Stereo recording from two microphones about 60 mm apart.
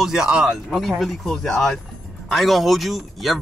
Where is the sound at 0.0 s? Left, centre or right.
Centre.